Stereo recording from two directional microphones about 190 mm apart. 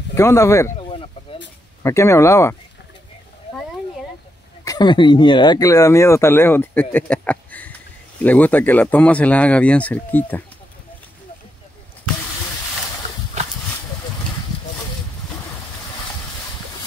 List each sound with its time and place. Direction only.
0.1 s speech: 15° left (ahead or behind)
0.7 s a sound: 30° left (ahead or behind)
1.8 s speech: 15° left (ahead or behind)
4.6 s speech: 25° left (ahead or behind)